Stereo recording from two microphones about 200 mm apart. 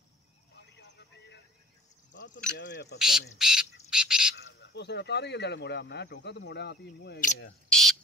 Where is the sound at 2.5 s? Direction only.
55° left (ahead or behind).